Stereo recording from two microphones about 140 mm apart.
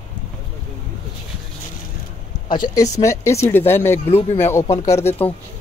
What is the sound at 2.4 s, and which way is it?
Speech, 35° left (ahead or behind).